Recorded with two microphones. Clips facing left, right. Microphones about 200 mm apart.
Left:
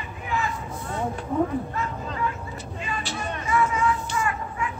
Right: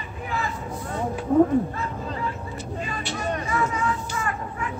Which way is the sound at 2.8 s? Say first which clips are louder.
Right 1 dB; 40° right (ahead or behind).